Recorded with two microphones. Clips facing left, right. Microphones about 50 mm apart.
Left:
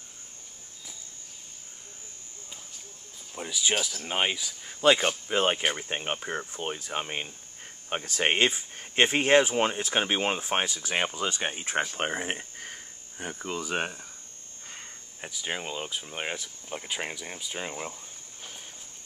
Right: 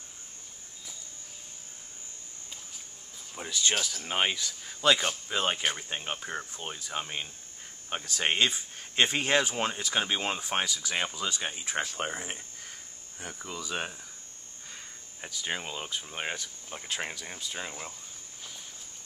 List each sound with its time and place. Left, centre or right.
3.3 s speech: centre
4.8 s speech: left
5.9 s speech: left
15.2 s speech: centre